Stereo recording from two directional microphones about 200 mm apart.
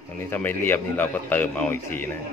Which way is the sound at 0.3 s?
10° left (ahead or behind).